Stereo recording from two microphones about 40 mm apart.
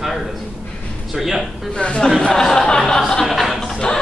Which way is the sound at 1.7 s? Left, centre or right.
Left.